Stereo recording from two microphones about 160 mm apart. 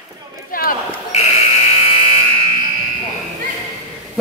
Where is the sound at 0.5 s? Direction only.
60° left (ahead or behind).